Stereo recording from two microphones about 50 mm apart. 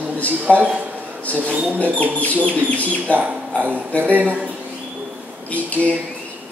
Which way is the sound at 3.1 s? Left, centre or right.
Right.